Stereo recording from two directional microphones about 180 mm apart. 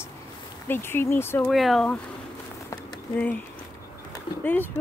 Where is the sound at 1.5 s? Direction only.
Centre (ahead or behind).